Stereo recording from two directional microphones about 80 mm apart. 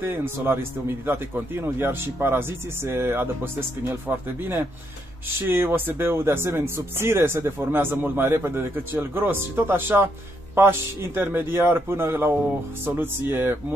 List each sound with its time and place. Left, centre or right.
0.0 s speech: right
5.5 s speech: right